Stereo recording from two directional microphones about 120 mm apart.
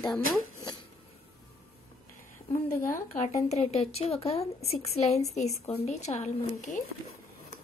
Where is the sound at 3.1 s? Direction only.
70° left (ahead or behind).